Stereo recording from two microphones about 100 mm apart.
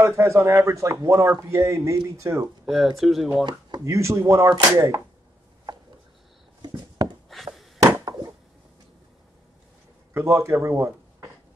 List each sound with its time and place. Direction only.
0.0 s a man's voice: 25° right (ahead or behind)
2.6 s speech: centre (ahead or behind)
3.8 s a man's voice: 30° right (ahead or behind)
6.6 s a sound: 45° right (ahead or behind)
7.2 s a sound: centre (ahead or behind)
10.1 s speech: 30° right (ahead or behind)